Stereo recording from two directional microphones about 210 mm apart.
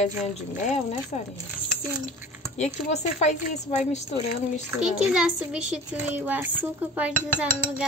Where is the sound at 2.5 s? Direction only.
30° left (ahead or behind).